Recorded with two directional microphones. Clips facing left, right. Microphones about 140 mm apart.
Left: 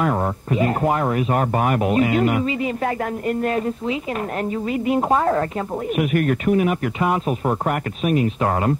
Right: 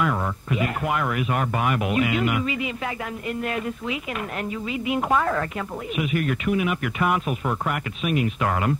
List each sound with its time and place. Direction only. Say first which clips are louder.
0.0 s speech: left 4 dB; 40° left (ahead or behind)
5.9 s speech: left 5 dB; 50° left (ahead or behind)